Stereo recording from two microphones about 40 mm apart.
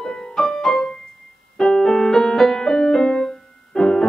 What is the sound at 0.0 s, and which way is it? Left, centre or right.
Music, centre.